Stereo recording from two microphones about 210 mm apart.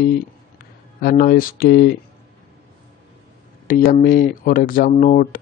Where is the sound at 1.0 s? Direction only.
45° left (ahead or behind).